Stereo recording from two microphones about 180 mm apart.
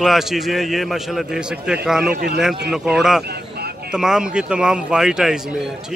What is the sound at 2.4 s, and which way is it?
A man's voice, 5° right (ahead or behind).